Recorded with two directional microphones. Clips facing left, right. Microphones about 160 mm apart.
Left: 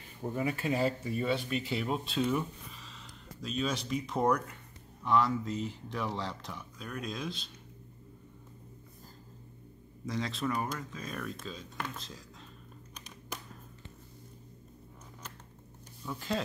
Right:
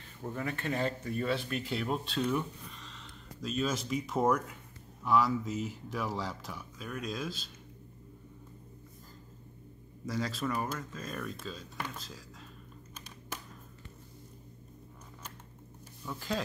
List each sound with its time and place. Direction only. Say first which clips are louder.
0.2 s speech: left 3 dB; 10° left (ahead or behind)
10.0 s speech: even; centre (ahead or behind)
16.1 s speech: left 1 dB; centre (ahead or behind)